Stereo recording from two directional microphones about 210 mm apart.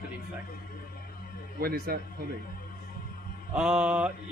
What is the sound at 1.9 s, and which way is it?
Speech, 45° right (ahead or behind).